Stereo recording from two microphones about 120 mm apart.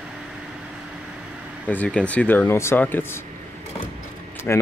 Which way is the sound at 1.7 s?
10° left (ahead or behind).